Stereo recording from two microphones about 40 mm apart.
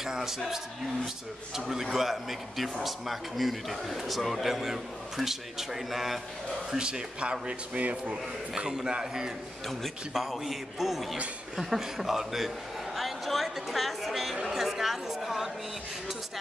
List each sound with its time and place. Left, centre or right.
0.0 s a man's voice: centre
6.7 s speech: centre
8.6 s a man's voice: centre
9.7 s a man's voice: centre
12.9 s a sound: centre
14.4 s chatter: centre